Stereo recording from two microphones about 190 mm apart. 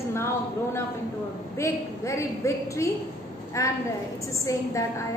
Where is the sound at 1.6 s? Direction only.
15° left (ahead or behind).